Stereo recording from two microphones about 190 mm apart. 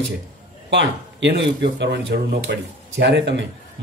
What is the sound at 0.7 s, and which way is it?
Speech, 65° right (ahead or behind).